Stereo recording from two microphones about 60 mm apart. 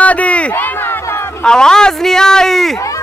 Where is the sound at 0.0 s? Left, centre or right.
Left.